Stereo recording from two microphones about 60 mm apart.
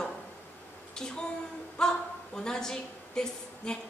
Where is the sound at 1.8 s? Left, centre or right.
Centre.